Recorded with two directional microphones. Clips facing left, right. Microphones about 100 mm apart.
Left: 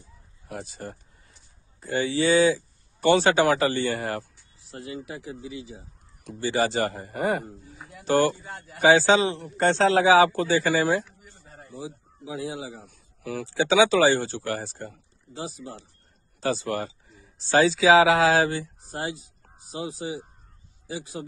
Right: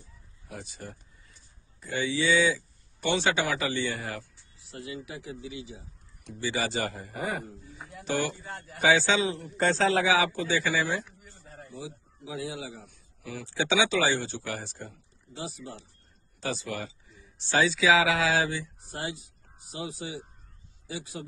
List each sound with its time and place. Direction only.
0.5 s speech: 45° left (ahead or behind)
7.7 s speech: centre (ahead or behind)
8.0 s speech: 40° left (ahead or behind)
8.4 s speech: 10° left (ahead or behind)
8.8 s speech: 35° left (ahead or behind)
9.7 s speech: 65° left (ahead or behind)
9.9 s speech: 40° left (ahead or behind)
12.3 s speech: 30° left (ahead or behind)
12.8 s speech: 70° left (ahead or behind)
13.5 s speech: 40° left (ahead or behind)